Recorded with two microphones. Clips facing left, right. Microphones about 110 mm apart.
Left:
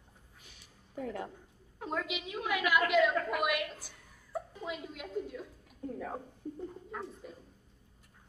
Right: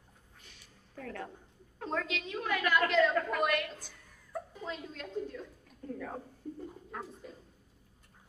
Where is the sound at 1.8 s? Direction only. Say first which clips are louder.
Right 1 dB; 5° left (ahead or behind).